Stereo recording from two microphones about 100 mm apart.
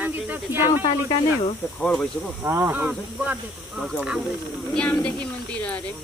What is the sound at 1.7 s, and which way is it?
Speech, 10° left (ahead or behind).